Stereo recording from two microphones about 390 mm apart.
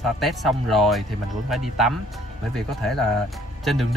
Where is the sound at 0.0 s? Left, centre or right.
Centre.